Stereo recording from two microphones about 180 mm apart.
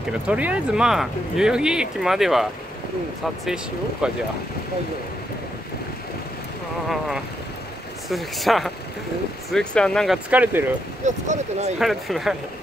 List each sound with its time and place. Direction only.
0.3 s speech: 5° right (ahead or behind)
3.4 s speech: 5° right (ahead or behind)
8.1 s speech: centre (ahead or behind)
11.1 s speech: 40° right (ahead or behind)
11.8 s speech: centre (ahead or behind)